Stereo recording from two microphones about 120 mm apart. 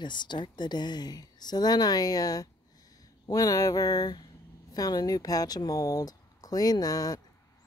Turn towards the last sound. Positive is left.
turn(degrees=30)  # may be behind; listen again after turning